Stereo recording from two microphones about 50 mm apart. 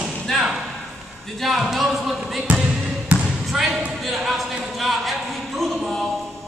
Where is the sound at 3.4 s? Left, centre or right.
Centre.